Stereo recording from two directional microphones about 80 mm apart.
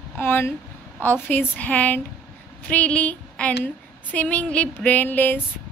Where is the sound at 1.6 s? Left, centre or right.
Centre.